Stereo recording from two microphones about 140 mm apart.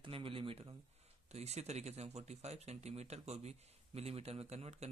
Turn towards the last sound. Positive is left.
turn(degrees=-50)  # may be behind; listen again after turning